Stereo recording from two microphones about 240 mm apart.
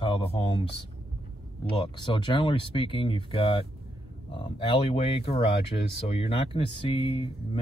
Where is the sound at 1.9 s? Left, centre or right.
Centre.